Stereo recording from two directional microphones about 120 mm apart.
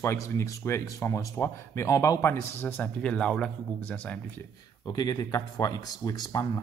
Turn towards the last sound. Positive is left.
turn(degrees=30)  # may be behind; listen again after turning